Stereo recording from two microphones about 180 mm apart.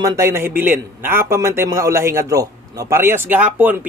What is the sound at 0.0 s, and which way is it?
A man's voice, 15° right (ahead or behind).